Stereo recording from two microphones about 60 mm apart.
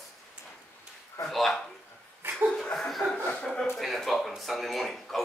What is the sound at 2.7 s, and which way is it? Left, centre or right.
Chuckle, centre.